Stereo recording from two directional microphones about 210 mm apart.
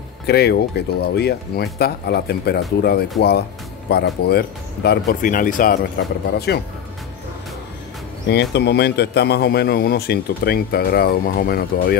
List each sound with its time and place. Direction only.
0.3 s speech: 50° left (ahead or behind)
8.3 s speech: 50° left (ahead or behind)